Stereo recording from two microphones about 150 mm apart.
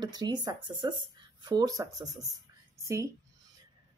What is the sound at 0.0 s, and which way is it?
Speech, 25° right (ahead or behind).